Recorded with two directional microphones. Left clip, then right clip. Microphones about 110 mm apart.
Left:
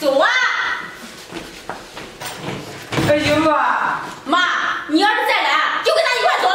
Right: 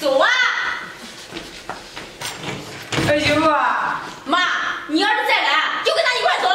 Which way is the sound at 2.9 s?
Centre (ahead or behind).